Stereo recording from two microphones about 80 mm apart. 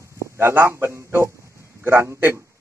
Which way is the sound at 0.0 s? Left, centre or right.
Right.